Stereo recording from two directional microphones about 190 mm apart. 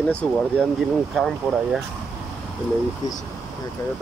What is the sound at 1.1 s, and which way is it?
Speech, centre (ahead or behind).